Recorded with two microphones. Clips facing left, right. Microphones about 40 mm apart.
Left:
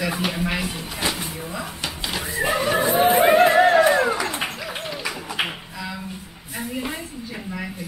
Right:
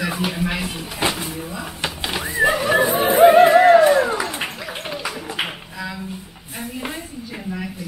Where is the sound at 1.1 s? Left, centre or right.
Centre.